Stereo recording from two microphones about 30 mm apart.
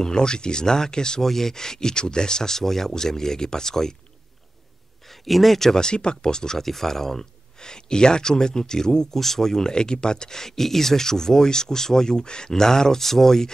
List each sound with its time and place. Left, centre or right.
0.0 s speech: left
1.2 s speech: centre
5.0 s speech: centre
5.8 s speech: left
6.6 s speech: centre
9.1 s speech: centre